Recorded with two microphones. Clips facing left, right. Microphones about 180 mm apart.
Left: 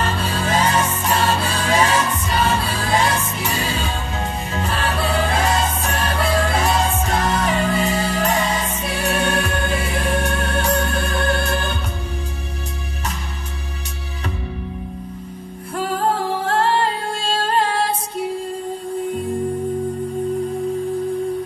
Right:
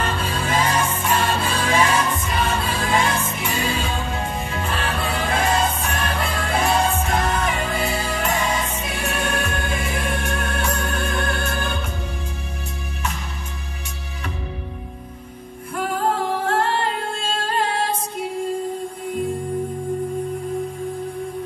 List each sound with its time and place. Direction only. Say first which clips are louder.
0.0 s music: left 2 dB; 35° left (ahead or behind)